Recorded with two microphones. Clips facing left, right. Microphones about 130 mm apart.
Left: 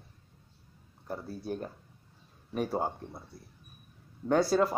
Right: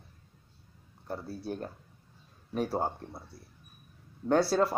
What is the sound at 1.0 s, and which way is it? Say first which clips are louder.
Speech: even; 5° right (ahead or behind).